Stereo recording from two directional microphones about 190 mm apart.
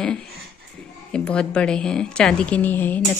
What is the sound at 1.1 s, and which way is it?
Speech, 5° left (ahead or behind).